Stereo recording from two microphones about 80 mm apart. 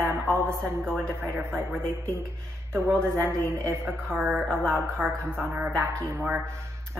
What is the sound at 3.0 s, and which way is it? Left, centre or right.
A woman's voice, right.